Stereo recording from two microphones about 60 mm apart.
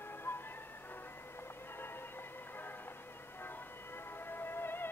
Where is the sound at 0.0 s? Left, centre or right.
Left.